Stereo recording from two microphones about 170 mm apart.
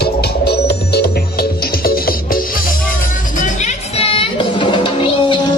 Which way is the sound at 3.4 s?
40° left (ahead or behind).